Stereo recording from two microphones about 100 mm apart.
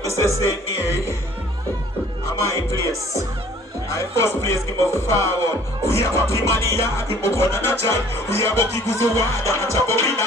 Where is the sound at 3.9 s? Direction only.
25° left (ahead or behind).